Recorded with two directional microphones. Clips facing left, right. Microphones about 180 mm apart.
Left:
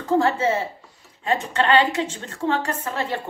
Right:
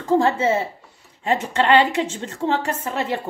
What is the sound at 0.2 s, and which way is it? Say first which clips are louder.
A woman's voice: right 2 dB; 20° right (ahead or behind).